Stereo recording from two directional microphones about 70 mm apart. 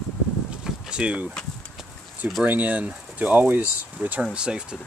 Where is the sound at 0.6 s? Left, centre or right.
Centre.